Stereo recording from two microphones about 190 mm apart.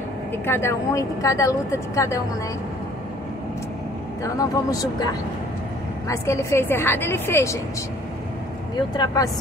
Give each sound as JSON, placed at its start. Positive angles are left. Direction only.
{"t": 0.5, "sound": "a woman's voice", "side_deg": 15}
{"t": 4.2, "sound": "a woman's voice", "side_deg": 20}
{"t": 8.9, "sound": "speech", "side_deg": 20}